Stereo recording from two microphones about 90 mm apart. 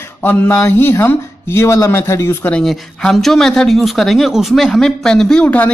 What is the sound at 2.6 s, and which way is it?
Speech, 5° left (ahead or behind).